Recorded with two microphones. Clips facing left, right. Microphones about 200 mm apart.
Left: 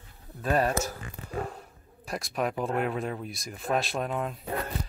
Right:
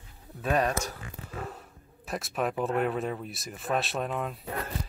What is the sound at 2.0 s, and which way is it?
Speech, centre (ahead or behind).